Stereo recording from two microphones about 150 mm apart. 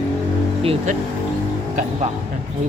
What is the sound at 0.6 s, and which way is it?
Speech, 40° right (ahead or behind).